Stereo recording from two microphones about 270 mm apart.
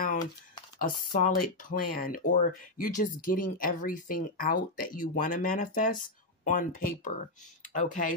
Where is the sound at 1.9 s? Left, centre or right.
Left.